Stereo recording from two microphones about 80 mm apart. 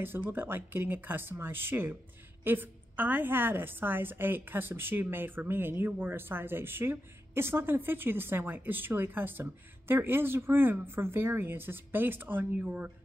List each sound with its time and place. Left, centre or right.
0.0 s a woman's voice: right